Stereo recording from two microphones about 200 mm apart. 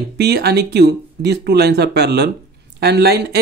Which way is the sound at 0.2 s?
55° right (ahead or behind).